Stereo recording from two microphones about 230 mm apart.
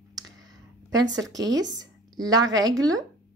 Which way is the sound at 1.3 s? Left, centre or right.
Centre.